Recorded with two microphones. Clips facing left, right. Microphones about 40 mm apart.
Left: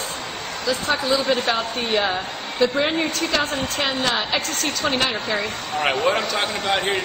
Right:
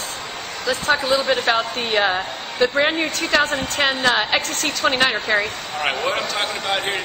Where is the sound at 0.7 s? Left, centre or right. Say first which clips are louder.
Right 2 dB; right.